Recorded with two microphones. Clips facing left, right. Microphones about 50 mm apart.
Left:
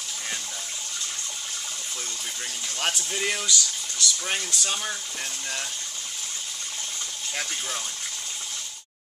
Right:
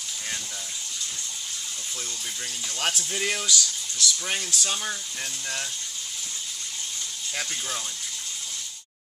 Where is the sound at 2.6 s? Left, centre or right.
Centre.